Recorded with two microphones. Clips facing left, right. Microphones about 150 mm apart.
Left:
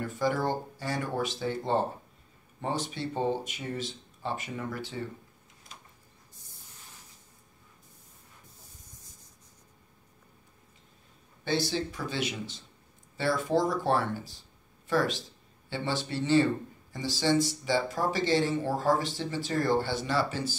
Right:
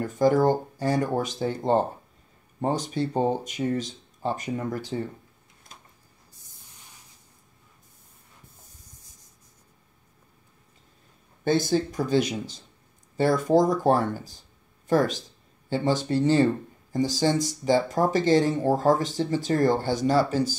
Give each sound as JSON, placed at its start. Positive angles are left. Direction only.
{"t": 0.0, "sound": "speech", "side_deg": -45}
{"t": 11.4, "sound": "speech", "side_deg": -50}